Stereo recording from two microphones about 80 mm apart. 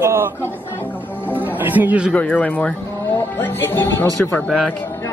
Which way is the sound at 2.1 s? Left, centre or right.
Centre.